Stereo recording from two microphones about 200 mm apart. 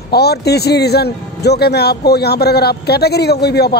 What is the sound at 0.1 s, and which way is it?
A man's voice, 55° left (ahead or behind).